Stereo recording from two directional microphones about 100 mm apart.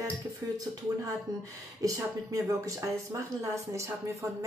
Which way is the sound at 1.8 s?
35° right (ahead or behind).